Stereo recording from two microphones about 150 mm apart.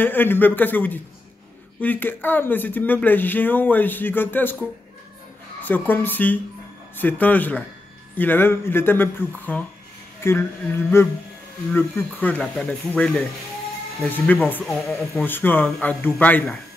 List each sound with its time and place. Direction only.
0.0 s a woman's voice: 15° left (ahead or behind)
15.2 s speech: 15° left (ahead or behind)